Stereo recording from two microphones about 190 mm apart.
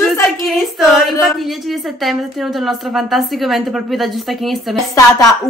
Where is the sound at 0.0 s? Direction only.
Centre (ahead or behind).